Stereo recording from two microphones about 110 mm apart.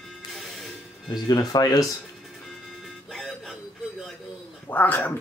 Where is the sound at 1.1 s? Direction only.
40° left (ahead or behind).